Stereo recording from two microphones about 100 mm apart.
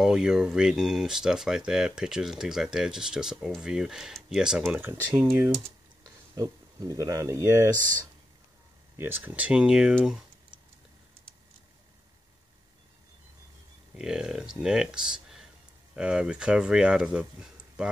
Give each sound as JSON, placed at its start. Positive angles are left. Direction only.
{"t": 0.0, "sound": "speech", "side_deg": -5}
{"t": 4.7, "sound": "speech", "side_deg": -20}
{"t": 6.3, "sound": "speech", "side_deg": -35}
{"t": 8.9, "sound": "speech", "side_deg": -20}
{"t": 13.9, "sound": "speech", "side_deg": -5}